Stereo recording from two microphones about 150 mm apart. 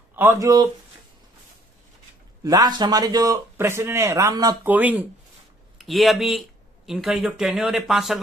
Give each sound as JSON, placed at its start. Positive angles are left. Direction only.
{"t": 0.1, "sound": "a sound", "side_deg": -15}
{"t": 0.4, "sound": "a man's voice", "side_deg": -25}
{"t": 2.4, "sound": "a man's voice", "side_deg": -25}
{"t": 4.6, "sound": "speech", "side_deg": -10}
{"t": 5.8, "sound": "speech", "side_deg": 0}